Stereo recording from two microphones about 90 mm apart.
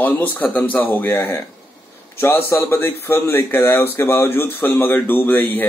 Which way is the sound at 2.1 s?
30° left (ahead or behind).